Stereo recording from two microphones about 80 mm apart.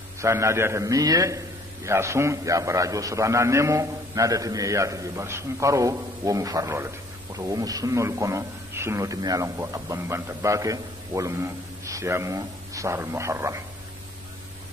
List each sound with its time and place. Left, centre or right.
0.2 s speech: right